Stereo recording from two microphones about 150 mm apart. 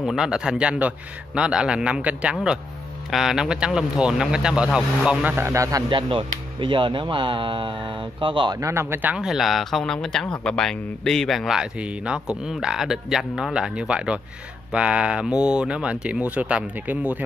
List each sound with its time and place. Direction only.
0.0 s speech: 5° right (ahead or behind); by 8.5 s 35° right (ahead or behind)
8.5 s speech: 20° right (ahead or behind)